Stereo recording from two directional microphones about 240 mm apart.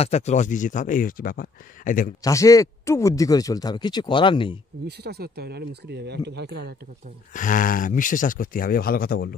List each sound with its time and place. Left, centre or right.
0.0 s speech: left
2.2 s speech: centre
4.8 s speech: right
7.3 s speech: left